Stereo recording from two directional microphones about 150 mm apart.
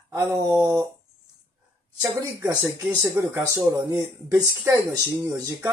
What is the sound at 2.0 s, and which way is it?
Speech, 20° right (ahead or behind).